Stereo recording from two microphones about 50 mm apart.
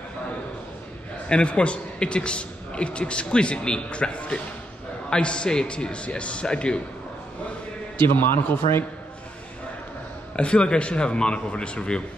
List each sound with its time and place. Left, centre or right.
1.3 s a man's voice: left
8.0 s a man's voice: left
10.3 s a man's voice: left